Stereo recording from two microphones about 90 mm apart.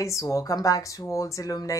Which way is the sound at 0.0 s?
35° left (ahead or behind).